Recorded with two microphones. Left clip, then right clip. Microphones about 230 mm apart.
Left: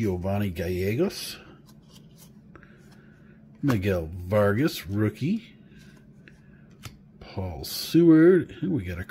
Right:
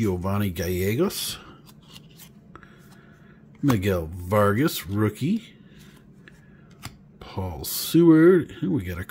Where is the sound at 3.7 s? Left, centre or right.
Centre.